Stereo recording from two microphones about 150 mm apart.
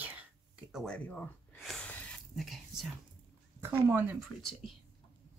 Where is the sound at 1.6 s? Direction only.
5° left (ahead or behind).